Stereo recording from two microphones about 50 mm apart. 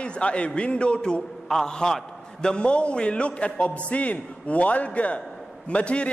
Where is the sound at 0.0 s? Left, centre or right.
Left.